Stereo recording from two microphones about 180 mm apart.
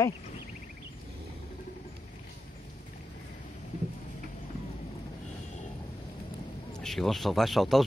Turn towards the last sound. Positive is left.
turn(degrees=0)  # may be behind; listen again after turning